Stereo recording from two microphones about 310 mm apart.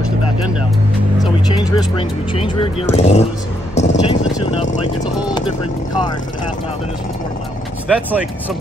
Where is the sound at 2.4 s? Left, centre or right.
Centre.